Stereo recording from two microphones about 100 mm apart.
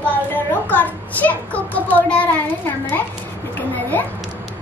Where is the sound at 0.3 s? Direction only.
15° left (ahead or behind).